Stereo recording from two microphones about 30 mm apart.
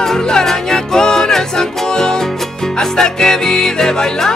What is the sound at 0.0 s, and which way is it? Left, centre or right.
Music, centre.